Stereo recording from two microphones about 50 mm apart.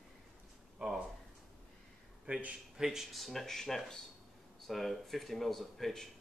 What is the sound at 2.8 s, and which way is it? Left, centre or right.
Speech, centre.